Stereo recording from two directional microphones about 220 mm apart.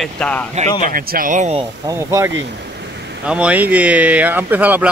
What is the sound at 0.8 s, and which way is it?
Speech, 40° right (ahead or behind).